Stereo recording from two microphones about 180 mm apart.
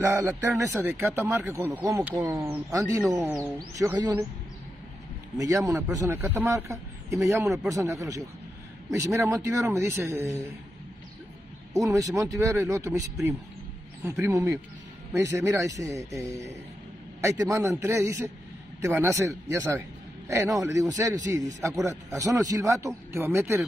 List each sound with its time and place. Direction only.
0.0 s a man's voice: 15° right (ahead or behind)
5.4 s a man's voice: 20° right (ahead or behind)
11.7 s a man's voice: 20° right (ahead or behind)